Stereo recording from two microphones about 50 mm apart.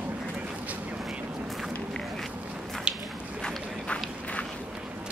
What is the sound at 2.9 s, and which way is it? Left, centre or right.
Squish, centre.